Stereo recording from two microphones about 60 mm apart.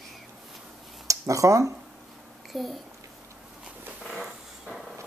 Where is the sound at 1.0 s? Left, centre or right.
Right.